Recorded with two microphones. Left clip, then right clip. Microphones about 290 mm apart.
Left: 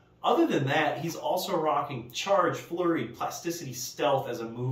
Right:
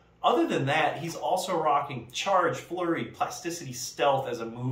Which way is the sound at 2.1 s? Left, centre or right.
Centre.